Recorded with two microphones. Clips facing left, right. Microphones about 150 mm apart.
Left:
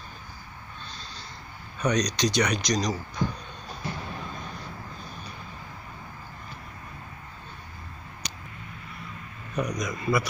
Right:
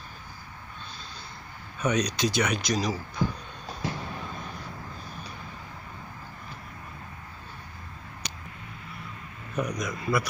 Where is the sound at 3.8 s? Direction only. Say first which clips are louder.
Right 2 dB; 90° right.